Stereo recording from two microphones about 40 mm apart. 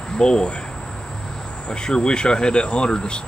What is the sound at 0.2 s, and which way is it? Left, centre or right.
Speech, left.